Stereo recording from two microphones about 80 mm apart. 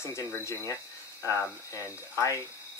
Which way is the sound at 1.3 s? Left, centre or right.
Right.